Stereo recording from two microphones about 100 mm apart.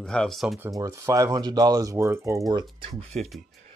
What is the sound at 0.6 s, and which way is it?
Speech, 35° right (ahead or behind).